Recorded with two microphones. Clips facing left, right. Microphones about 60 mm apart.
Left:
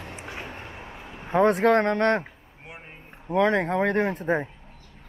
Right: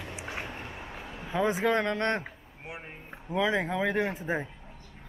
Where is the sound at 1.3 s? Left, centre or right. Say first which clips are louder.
Left 7 dB; left.